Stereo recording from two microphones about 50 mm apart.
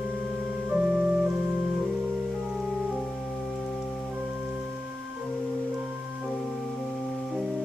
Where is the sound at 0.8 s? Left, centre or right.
Centre.